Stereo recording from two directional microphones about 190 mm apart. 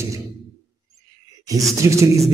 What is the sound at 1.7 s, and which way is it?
Music, 15° right (ahead or behind).